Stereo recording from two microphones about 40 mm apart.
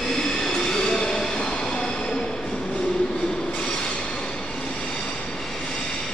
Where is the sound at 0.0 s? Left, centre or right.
Centre.